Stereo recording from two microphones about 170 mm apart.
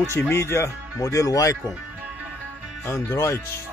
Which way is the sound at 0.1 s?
15° left (ahead or behind).